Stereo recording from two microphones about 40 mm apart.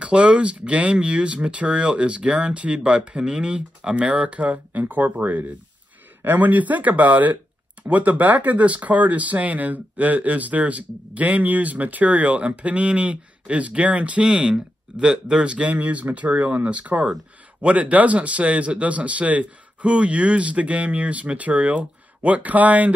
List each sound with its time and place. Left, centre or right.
0.0 s speech: right
14.2 s speech: right